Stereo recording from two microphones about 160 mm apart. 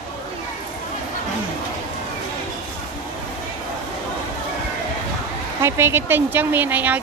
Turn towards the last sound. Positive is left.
turn(degrees=-10)  # may be behind; listen again after turning